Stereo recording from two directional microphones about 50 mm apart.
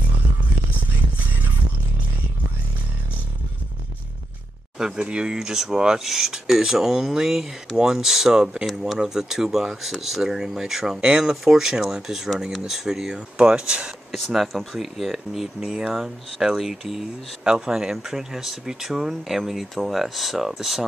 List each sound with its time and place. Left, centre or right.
4.7 s speech: centre
14.1 s speech: centre